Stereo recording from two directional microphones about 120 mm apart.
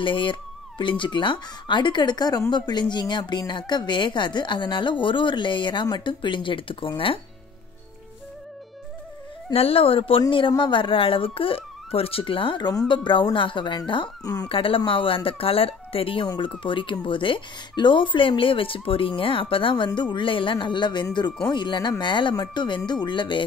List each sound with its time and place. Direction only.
0.0 s a woman's voice: 45° left (ahead or behind)
9.5 s speech: 55° left (ahead or behind)
14.2 s a woman's voice: 30° left (ahead or behind)
14.5 s a woman's voice: 50° left (ahead or behind)